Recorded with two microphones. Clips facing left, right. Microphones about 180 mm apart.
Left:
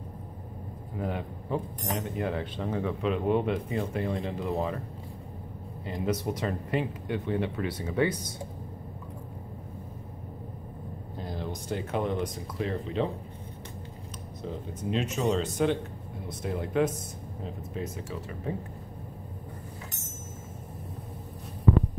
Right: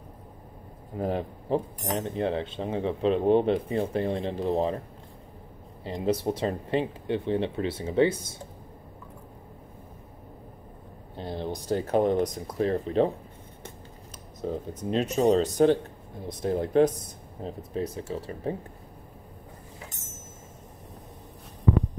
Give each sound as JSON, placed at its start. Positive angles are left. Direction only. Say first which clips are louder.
{"t": 0.9, "sound": "cutlery", "louder": "right 5 dB", "side_deg": -35}
{"t": 5.9, "sound": "speech", "louder": "right 3 dB", "side_deg": -30}
{"t": 11.1, "sound": "cutlery", "louder": "right 4 dB", "side_deg": -30}
{"t": 14.5, "sound": "cutlery", "louder": "right 3 dB", "side_deg": -40}